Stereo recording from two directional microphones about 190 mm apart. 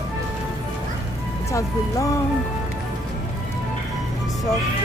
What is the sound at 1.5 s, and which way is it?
Speech, 15° left (ahead or behind).